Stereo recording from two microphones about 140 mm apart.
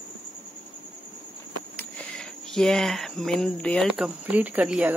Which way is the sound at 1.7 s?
10° left (ahead or behind).